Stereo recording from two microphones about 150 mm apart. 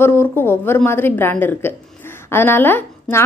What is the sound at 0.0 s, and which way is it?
A woman's voice, 15° left (ahead or behind).